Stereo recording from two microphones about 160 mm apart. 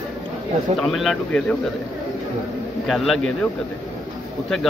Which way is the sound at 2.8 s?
Centre (ahead or behind).